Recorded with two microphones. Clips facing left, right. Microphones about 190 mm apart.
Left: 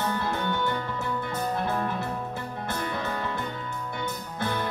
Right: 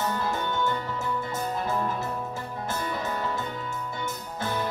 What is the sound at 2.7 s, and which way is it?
Music, 60° left (ahead or behind).